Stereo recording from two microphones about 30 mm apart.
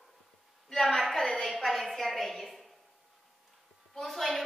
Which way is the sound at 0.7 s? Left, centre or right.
Centre.